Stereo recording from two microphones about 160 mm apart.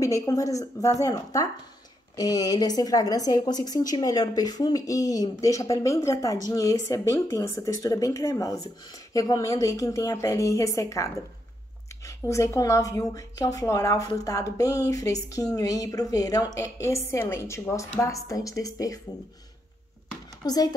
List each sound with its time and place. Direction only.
0.0 s a woman's voice: 20° left (ahead or behind)
20.4 s a woman's voice: 25° left (ahead or behind)